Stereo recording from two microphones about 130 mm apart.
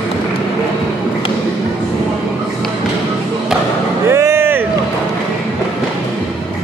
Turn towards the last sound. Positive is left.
turn(degrees=-15)  # may be behind; listen again after turning